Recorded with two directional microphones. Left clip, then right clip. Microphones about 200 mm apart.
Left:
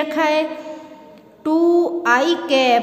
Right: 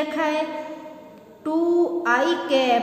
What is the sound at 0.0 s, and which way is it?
Speech, 40° left (ahead or behind).